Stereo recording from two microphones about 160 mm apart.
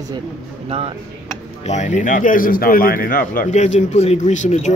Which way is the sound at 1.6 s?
45° left (ahead or behind).